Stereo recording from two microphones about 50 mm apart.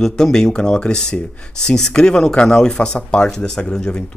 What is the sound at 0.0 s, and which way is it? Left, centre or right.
Speech, centre.